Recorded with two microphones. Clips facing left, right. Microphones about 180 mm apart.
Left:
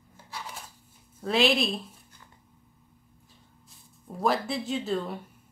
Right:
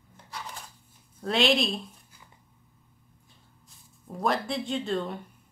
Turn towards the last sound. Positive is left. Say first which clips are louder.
# even
turn(degrees=0)  # may be behind; listen again after turning